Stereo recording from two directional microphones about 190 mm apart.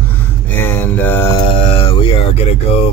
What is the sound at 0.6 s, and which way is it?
Speech, 10° left (ahead or behind).